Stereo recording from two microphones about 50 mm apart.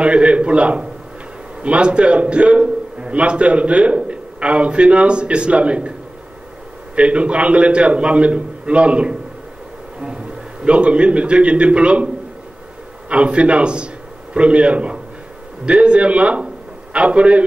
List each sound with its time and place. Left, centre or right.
0.0 s a man's voice: right
7.0 s a man's voice: right
13.1 s a man's voice: right